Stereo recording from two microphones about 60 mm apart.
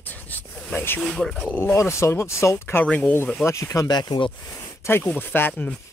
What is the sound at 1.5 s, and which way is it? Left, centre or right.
Speech, left.